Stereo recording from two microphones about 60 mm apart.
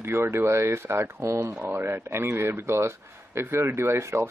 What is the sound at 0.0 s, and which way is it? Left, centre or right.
A man's voice, right.